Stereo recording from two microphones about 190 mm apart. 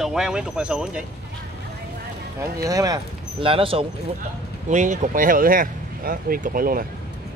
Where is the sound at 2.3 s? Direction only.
15° right (ahead or behind).